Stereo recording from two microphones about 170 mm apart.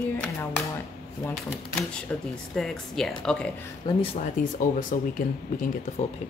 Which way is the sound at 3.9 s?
25° left (ahead or behind).